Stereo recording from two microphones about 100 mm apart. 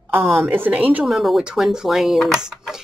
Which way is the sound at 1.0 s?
Centre (ahead or behind).